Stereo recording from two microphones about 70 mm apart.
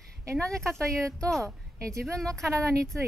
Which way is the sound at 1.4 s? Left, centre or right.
Right.